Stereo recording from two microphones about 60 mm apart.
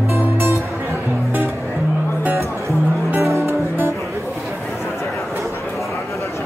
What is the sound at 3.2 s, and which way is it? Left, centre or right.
Music, right.